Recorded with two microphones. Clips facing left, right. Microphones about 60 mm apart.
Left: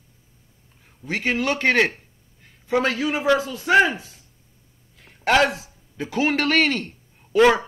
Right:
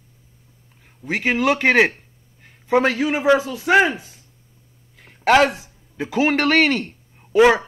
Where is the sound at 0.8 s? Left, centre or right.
Centre.